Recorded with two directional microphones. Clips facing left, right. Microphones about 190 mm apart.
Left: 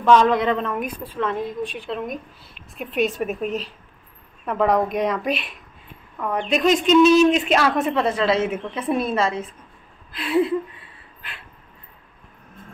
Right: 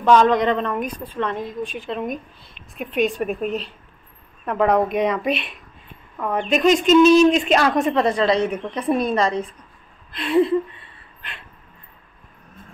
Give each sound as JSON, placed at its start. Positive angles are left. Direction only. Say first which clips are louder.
{"t": 0.0, "sound": "a woman's voice", "louder": "right 1 dB", "side_deg": 0}